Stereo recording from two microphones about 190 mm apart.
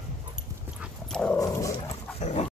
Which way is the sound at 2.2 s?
35° left (ahead or behind).